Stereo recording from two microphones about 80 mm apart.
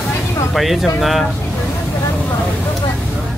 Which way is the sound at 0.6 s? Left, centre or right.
Centre.